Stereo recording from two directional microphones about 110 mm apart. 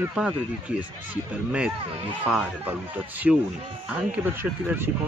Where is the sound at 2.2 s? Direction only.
10° right (ahead or behind).